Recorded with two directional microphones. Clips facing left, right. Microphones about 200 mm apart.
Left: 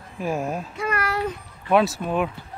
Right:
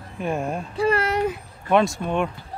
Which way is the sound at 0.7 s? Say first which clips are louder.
Right 8 dB; 30° right (ahead or behind).